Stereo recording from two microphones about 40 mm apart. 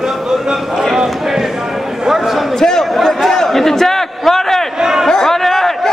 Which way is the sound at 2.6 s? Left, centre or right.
Centre.